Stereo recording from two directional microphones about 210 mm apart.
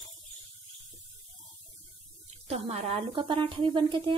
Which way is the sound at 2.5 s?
30° right (ahead or behind).